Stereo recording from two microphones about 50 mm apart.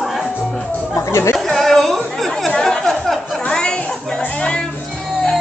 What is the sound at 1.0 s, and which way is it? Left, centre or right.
Chatter, left.